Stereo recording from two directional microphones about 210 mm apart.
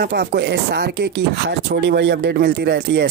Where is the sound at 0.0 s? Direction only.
50° right (ahead or behind).